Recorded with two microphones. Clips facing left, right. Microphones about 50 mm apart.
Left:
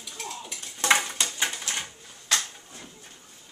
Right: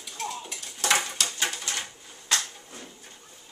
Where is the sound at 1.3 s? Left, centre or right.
Centre.